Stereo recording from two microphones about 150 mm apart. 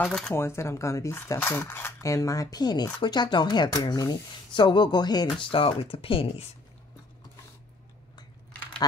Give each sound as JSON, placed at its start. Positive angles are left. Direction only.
{"t": 0.0, "sound": "speech", "side_deg": 5}
{"t": 0.3, "sound": "speech", "side_deg": 15}